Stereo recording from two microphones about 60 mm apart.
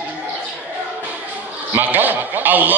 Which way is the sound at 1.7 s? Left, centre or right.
Right.